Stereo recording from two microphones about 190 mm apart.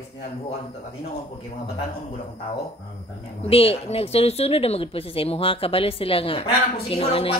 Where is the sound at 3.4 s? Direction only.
30° left (ahead or behind).